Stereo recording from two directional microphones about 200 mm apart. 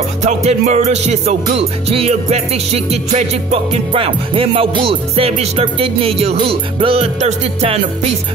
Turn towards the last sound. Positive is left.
turn(degrees=-30)  # may be behind; listen again after turning